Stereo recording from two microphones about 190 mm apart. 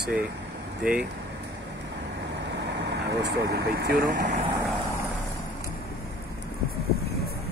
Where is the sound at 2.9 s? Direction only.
65° right (ahead or behind).